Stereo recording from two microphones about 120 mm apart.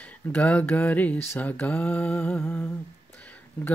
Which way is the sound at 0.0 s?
10° left (ahead or behind).